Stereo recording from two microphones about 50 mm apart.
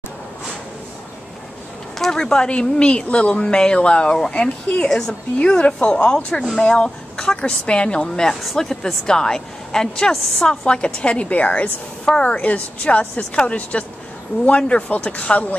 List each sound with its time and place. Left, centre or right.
2.0 s a sound: centre
2.2 s a woman's voice: centre
4.8 s speech: centre
5.4 s a woman's voice: left